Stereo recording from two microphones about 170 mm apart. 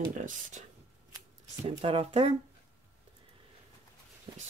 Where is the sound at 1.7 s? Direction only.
30° right (ahead or behind).